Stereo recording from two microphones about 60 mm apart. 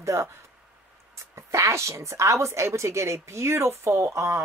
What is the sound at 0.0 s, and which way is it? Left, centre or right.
Speech, right.